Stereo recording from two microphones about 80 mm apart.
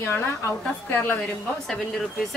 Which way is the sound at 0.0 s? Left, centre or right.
Left.